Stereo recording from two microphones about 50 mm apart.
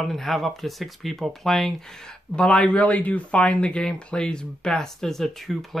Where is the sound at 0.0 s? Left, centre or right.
Centre.